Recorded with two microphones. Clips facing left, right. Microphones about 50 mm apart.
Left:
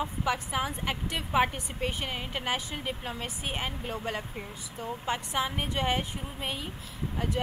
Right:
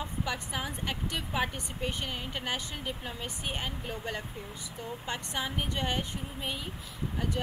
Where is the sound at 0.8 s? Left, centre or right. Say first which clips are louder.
Left 2 dB; left.